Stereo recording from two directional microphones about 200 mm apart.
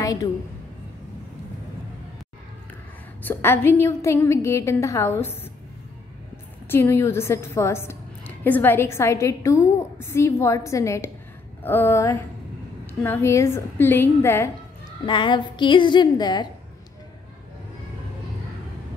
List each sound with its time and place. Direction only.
0.0 s a sound: 15° left (ahead or behind)
3.2 s a woman's voice: 10° left (ahead or behind)
6.7 s a woman's voice: 15° left (ahead or behind)
15.0 s a woman's voice: 25° left (ahead or behind)